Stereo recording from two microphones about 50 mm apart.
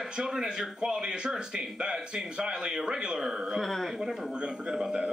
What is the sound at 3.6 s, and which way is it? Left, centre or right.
Speech, centre.